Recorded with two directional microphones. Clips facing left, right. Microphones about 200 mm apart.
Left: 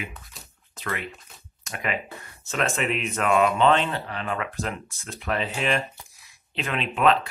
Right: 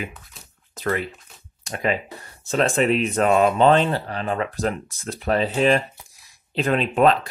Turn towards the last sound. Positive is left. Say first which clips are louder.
# right 5 dB
turn(degrees=-40)  # may be behind; listen again after turning